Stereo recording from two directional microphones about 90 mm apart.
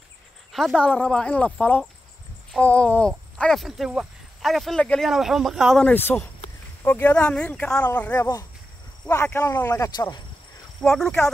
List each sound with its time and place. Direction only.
0.5 s a sound: centre (ahead or behind)
0.7 s speech: 15° left (ahead or behind)
5.9 s speech: 20° left (ahead or behind)
9.1 s speech: 30° left (ahead or behind)
9.7 s speech: 45° left (ahead or behind)
10.8 s speech: 5° left (ahead or behind)